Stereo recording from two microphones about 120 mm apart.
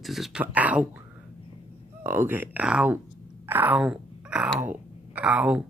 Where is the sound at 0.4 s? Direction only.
10° right (ahead or behind).